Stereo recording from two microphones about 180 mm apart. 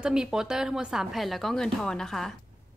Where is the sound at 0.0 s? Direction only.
5° right (ahead or behind).